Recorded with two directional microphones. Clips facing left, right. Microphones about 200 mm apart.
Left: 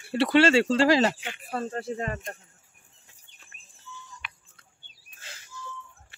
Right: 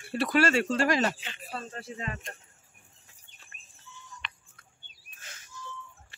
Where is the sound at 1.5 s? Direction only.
55° left (ahead or behind).